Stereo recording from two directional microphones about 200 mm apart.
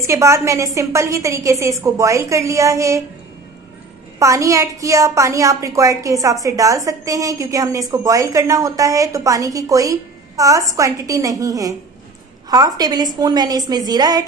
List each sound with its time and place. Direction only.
0.0 s a woman's voice: 15° right (ahead or behind)
4.2 s a woman's voice: 15° right (ahead or behind)